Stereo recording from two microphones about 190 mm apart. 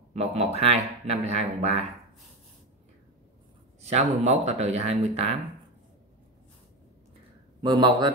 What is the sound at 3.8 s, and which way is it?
Speech, 35° right (ahead or behind).